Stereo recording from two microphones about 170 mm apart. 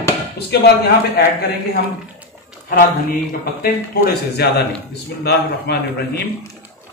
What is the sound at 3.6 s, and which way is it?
A man's voice, 65° left (ahead or behind).